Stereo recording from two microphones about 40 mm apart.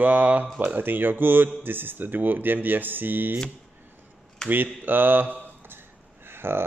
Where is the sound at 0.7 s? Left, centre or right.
Right.